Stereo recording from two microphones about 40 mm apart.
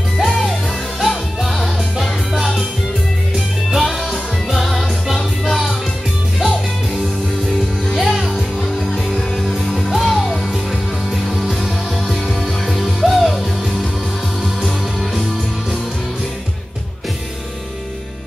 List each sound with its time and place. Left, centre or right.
1.0 s music: centre
8.3 s music: centre